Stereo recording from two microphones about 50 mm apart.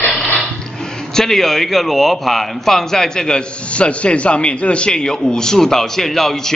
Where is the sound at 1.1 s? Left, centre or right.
Centre.